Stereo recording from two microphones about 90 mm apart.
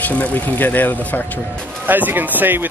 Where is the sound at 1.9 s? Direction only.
20° right (ahead or behind).